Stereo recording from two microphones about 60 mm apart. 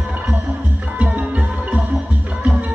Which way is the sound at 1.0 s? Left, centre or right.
Right.